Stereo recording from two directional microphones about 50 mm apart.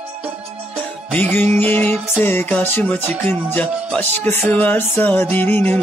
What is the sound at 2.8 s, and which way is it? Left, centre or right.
Music, left.